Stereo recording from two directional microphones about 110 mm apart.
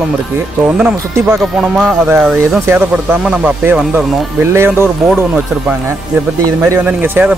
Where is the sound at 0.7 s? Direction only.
10° right (ahead or behind).